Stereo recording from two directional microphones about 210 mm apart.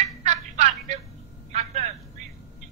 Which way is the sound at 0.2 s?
35° right (ahead or behind).